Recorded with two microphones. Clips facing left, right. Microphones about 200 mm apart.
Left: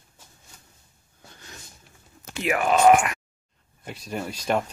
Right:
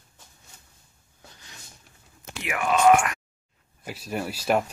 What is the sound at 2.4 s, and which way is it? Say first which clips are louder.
Speech: left 3 dB; 35° left (ahead or behind).